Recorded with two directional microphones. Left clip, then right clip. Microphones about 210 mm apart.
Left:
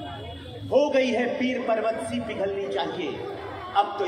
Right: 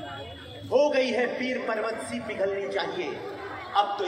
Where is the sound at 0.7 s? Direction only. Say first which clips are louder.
Left 1 dB; 25° right (ahead or behind).